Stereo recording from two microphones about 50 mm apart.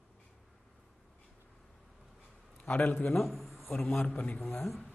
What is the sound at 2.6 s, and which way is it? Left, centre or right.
Speech, left.